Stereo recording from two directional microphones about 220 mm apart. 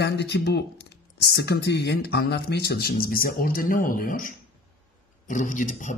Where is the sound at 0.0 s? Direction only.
50° left (ahead or behind).